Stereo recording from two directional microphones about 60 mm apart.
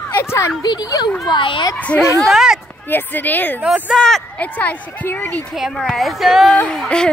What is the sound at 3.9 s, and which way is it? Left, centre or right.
Speech, centre.